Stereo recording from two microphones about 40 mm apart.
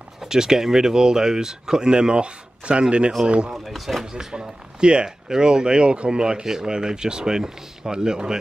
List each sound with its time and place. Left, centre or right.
0.2 s speech: centre
3.5 s speech: centre
4.0 s speech: centre